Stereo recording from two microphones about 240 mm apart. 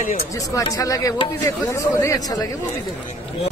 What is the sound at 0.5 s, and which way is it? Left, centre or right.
A man's voice, centre.